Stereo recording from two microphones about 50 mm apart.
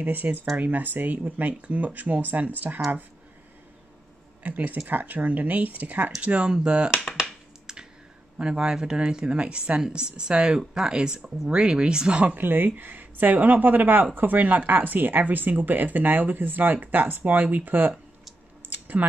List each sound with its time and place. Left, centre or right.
0.0 s speech: right
4.4 s speech: right
6.2 s speech: right
7.2 s finger snapping: centre
8.4 s speech: centre
12.4 s speech: right